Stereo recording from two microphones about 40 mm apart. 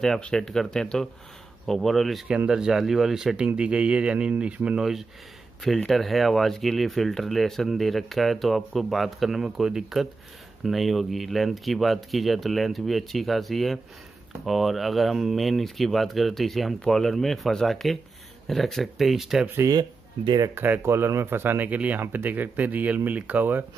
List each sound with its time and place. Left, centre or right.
0.3 s speech: centre
1.7 s speech: centre
2.2 s speech: right
2.8 s speech: centre
3.3 s speech: right
4.7 s speech: centre
5.9 s speech: centre
20.5 s speech: right
21.6 s speech: right